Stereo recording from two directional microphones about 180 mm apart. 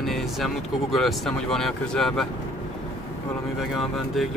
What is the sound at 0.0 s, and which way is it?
Speech, centre (ahead or behind).